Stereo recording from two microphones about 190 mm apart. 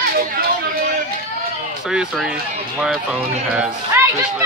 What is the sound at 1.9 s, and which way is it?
Speech, 5° right (ahead or behind).